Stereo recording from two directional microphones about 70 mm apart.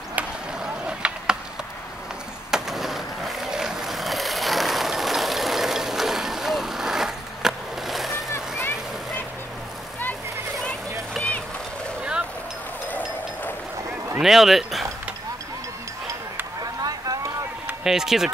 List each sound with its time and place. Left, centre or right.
0.6 s skateboard: centre
2.5 s vehicle: centre
8.3 s vehicle: left
12.0 s a sound: centre
12.8 s vehicle: left
14.2 s speech: centre
16.6 s a sound: right
17.8 s speech: centre